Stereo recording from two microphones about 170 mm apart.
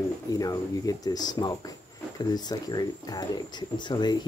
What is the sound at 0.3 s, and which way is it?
Speech, 20° left (ahead or behind).